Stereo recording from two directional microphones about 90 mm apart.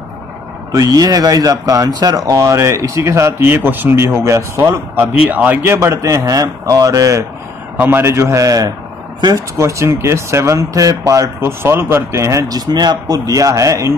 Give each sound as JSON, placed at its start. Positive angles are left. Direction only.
{"t": 0.7, "sound": "speech", "side_deg": -45}
{"t": 5.8, "sound": "speech", "side_deg": -35}
{"t": 7.8, "sound": "speech", "side_deg": -25}